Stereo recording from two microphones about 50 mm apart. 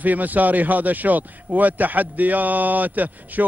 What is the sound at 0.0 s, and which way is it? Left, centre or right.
Speech, right.